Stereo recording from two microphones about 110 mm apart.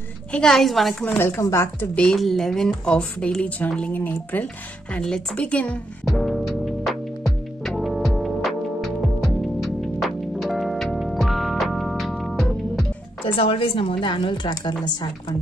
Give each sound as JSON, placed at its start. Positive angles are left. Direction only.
{"t": 0.3, "sound": "speech", "side_deg": 5}
{"t": 1.1, "sound": "speech", "side_deg": 20}
{"t": 2.0, "sound": "a woman's voice", "side_deg": 5}
{"t": 6.6, "sound": "music", "side_deg": 0}
{"t": 13.4, "sound": "a woman's voice", "side_deg": 55}